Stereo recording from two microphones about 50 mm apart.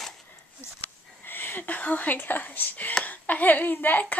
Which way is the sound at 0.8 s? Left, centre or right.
Left.